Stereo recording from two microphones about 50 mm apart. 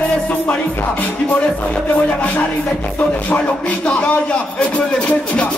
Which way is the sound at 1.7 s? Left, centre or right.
Left.